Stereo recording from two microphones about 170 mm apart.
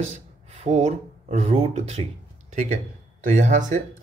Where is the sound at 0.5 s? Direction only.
40° right (ahead or behind).